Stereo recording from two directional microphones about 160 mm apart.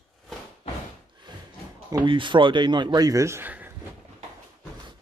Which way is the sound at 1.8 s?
30° right (ahead or behind).